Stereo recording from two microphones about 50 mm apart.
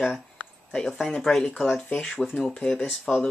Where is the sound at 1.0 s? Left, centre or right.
Centre.